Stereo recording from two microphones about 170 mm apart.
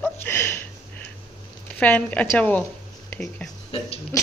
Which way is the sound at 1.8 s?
10° left (ahead or behind).